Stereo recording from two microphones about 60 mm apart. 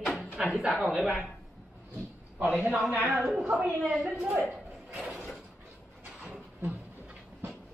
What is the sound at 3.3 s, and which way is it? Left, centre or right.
Speech, centre.